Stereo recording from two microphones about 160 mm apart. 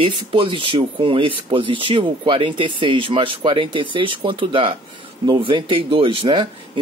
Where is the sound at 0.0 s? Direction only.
35° right (ahead or behind).